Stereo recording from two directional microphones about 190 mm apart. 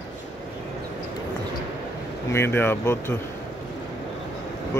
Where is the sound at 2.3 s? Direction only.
10° left (ahead or behind).